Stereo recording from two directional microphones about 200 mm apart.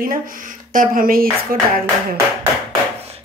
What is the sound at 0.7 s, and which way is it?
Speech, 45° right (ahead or behind).